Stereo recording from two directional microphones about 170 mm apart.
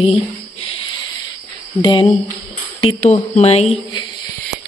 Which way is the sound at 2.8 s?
40° left (ahead or behind).